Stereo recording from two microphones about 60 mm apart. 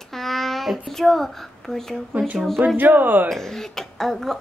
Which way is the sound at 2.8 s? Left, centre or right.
Right.